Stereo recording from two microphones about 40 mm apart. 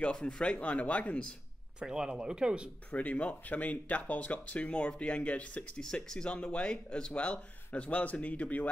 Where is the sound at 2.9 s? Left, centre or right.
Left.